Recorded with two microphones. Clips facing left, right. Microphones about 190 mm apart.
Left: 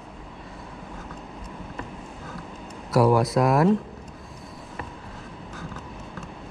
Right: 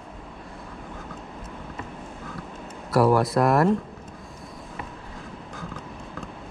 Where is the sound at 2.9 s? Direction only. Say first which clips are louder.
Even; centre (ahead or behind).